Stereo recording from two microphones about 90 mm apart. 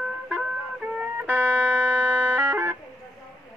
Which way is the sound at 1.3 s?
25° right (ahead or behind).